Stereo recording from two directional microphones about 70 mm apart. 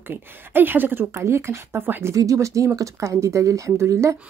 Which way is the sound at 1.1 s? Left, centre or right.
Right.